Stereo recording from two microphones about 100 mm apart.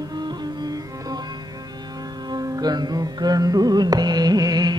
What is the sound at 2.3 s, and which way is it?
Music, 40° right (ahead or behind).